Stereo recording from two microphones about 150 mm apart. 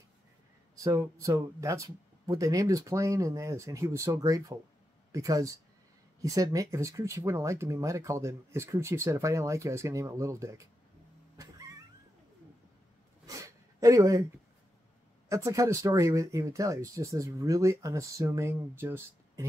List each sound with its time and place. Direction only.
0.8 s speech: 20° right (ahead or behind)
13.3 s a sound: 20° right (ahead or behind)
15.2 s speech: 20° right (ahead or behind)